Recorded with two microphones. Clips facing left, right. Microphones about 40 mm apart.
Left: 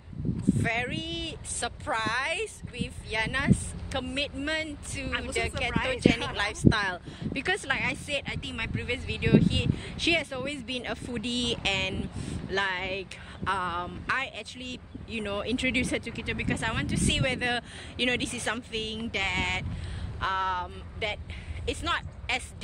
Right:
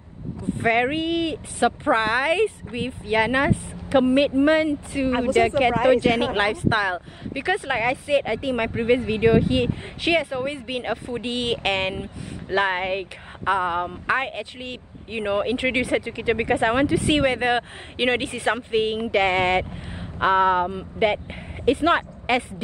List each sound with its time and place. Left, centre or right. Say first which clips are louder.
0.6 s a woman's voice: right 9 dB; right
3.9 s a woman's voice: right 15 dB; right
6.5 s speech: right 3 dB; right
7.4 s speech: right 7 dB; centre
8.6 s a woman's voice: right 13 dB; right
15.8 s a woman's voice: right 7 dB; right
16.4 s a woman's voice: right 11 dB; right
21.6 s speech: right 12 dB; right